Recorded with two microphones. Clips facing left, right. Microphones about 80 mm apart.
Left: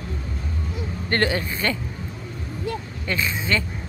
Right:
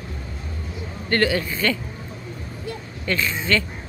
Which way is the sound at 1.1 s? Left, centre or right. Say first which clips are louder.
Right 2 dB; left.